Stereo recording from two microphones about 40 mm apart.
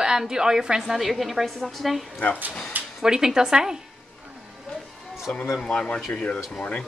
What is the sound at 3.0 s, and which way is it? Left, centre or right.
Speech, centre.